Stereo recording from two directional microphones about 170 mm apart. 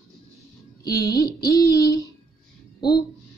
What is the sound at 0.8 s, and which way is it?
Speech, 20° left (ahead or behind).